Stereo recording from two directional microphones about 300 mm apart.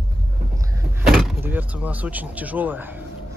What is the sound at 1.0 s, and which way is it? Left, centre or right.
Speech, centre.